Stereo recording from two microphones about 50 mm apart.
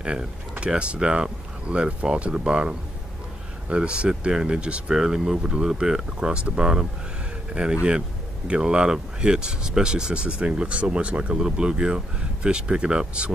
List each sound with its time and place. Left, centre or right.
0.0 s speech: right
11.3 s speech: centre